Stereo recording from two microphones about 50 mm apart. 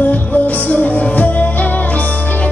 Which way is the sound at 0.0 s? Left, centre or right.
Left.